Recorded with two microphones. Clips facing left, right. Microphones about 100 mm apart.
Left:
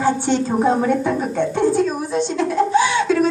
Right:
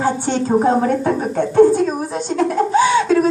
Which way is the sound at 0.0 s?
45° right (ahead or behind).